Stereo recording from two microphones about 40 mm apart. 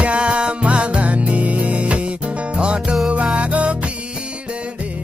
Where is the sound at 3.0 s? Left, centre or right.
Right.